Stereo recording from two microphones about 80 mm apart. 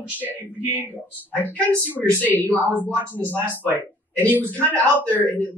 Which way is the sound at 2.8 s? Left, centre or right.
Left.